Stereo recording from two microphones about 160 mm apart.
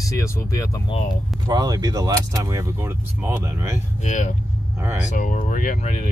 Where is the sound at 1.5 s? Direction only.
25° right (ahead or behind).